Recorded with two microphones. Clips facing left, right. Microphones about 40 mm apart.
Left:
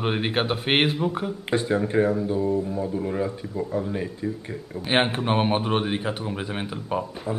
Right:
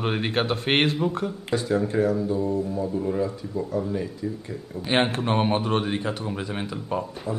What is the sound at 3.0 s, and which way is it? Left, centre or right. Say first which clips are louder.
Speech: right 1 dB; left.